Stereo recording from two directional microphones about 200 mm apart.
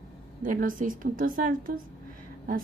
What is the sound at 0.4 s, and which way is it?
A woman's voice, 45° right (ahead or behind).